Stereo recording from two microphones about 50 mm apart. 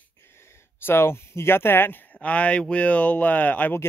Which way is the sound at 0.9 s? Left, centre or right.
Left.